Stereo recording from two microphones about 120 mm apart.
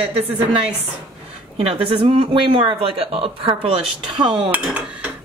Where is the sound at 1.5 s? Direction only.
50° right (ahead or behind).